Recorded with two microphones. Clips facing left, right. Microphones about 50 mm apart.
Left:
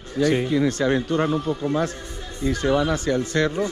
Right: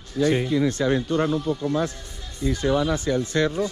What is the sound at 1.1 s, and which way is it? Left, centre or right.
Speech, left.